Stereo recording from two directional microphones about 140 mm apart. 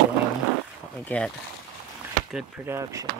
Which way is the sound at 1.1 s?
10° left (ahead or behind).